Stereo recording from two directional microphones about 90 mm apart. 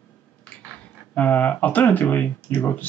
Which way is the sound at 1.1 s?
15° left (ahead or behind).